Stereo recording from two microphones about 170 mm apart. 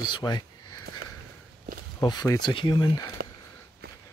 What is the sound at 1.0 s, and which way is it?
Sniff, 65° right (ahead or behind).